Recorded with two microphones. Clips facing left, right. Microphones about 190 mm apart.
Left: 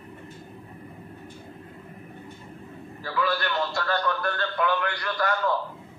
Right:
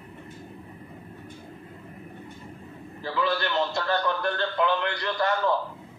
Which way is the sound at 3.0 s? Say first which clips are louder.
Even; 20° right (ahead or behind).